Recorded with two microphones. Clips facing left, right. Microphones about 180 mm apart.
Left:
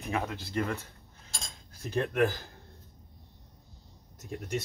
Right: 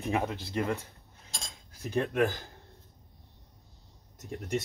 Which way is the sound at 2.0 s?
20° right (ahead or behind).